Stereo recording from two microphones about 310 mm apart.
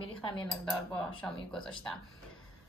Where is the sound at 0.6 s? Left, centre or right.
Centre.